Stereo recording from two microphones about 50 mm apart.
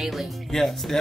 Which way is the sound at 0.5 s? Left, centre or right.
Centre.